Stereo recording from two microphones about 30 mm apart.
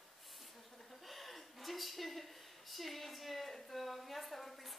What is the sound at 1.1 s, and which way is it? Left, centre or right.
A woman's voice, centre.